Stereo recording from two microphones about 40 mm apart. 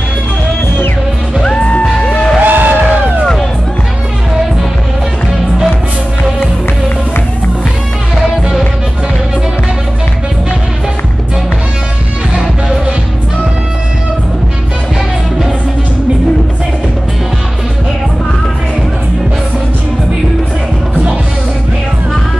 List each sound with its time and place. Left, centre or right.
1.6 s music: left
2.4 s music: right